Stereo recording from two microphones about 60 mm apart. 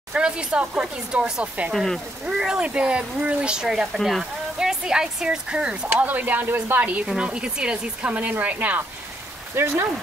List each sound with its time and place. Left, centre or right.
0.1 s speech: centre
1.7 s speech: centre
2.2 s speech: centre; by 7.0 s right
7.2 s speech: centre
9.6 s speech: right